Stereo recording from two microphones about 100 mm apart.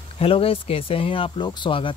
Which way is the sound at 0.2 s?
70° left (ahead or behind).